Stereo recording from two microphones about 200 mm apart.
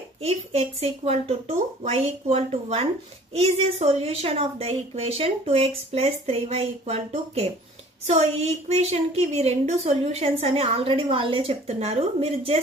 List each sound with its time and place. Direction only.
0.2 s a woman's voice: 30° right (ahead or behind)